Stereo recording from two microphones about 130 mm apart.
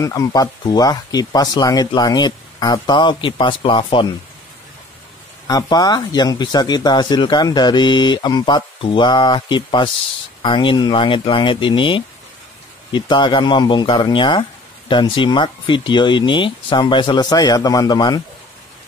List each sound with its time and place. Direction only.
0.0 s speech: 25° left (ahead or behind)
5.5 s speech: 30° left (ahead or behind)